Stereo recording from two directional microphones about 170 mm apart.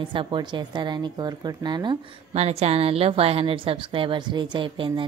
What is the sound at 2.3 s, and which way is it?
A woman's voice, 40° right (ahead or behind).